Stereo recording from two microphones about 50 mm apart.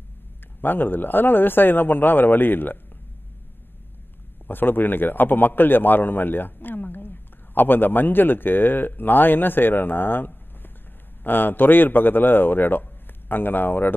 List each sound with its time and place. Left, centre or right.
0.6 s speech: left
4.5 s a man's voice: left